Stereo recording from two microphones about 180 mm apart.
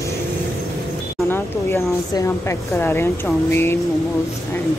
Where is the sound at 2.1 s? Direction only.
15° left (ahead or behind).